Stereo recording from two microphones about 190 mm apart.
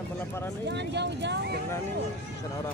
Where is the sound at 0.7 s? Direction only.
65° right (ahead or behind).